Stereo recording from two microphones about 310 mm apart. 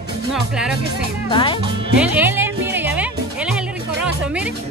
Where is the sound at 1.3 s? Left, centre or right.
Centre.